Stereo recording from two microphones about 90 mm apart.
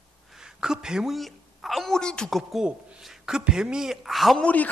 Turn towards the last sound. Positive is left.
turn(degrees=15)  # may be behind; listen again after turning